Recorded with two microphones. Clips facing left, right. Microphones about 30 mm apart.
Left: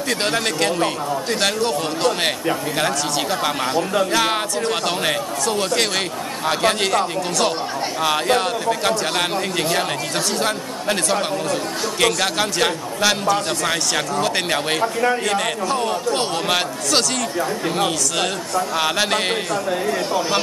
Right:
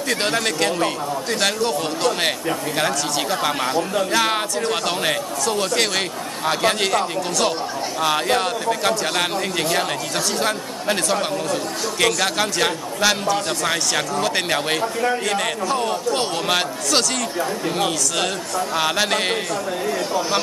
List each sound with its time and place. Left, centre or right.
0.1 s speech: centre
3.7 s speech: centre
4.1 s speech: centre
14.8 s speech: centre
15.2 s speech: centre
19.5 s speech: centre